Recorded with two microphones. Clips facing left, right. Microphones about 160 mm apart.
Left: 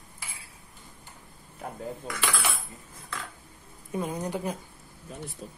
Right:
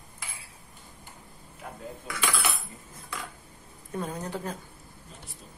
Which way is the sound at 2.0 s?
Centre (ahead or behind).